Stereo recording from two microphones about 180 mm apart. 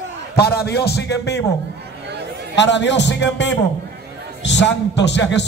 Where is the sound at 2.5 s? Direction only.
80° left.